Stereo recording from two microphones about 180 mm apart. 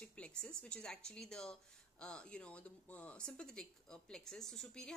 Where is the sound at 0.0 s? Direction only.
5° left (ahead or behind).